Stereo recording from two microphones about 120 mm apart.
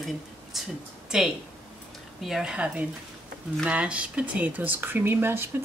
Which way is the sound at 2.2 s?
5° right (ahead or behind).